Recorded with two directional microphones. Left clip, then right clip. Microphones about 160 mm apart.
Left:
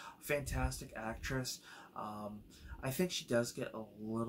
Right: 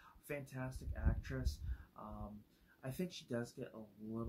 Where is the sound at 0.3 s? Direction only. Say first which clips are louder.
Left 9 dB; 5° left (ahead or behind).